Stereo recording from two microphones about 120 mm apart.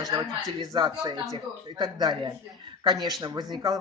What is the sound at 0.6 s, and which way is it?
Speech, 35° right (ahead or behind).